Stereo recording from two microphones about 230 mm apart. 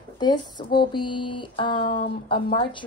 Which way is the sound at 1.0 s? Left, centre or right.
Left.